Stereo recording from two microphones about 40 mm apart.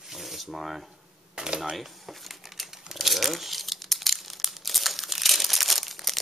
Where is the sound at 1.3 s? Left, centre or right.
Centre.